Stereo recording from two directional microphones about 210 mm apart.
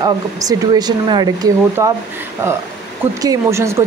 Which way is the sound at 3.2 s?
15° right (ahead or behind).